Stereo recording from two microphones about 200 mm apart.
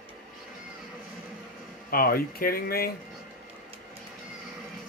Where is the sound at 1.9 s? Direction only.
45° left (ahead or behind).